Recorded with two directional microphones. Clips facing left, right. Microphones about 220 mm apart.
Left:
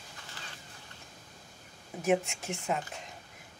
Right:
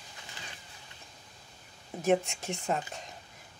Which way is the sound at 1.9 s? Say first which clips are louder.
Right 2 dB; 5° left (ahead or behind).